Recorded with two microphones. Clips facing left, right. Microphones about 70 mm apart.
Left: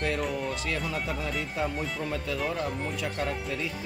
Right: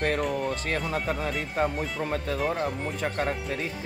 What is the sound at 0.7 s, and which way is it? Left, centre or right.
Speech, right.